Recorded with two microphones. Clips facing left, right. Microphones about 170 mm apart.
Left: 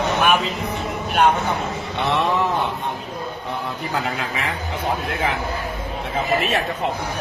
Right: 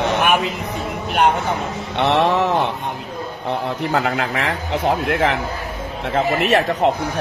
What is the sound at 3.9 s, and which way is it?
Speech, 70° right (ahead or behind).